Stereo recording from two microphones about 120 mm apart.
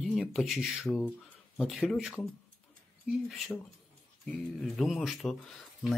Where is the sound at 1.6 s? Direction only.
Centre (ahead or behind).